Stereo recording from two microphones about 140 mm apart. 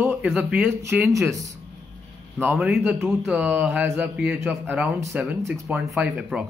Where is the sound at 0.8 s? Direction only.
20° right (ahead or behind).